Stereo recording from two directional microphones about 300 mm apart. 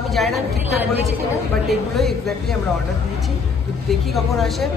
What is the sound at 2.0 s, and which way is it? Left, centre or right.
Speech, centre.